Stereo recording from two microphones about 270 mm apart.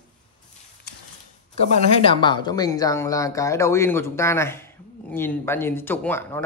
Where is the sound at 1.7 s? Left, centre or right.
Centre.